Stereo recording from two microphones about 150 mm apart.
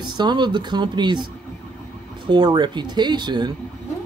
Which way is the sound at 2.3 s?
30° right (ahead or behind).